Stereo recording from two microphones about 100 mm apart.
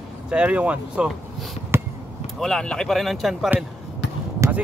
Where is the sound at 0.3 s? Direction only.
10° right (ahead or behind).